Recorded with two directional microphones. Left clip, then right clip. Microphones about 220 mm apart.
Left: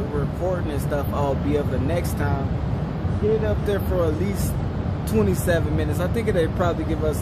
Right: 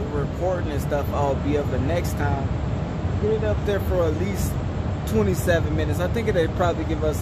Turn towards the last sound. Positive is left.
turn(degrees=-15)  # may be behind; listen again after turning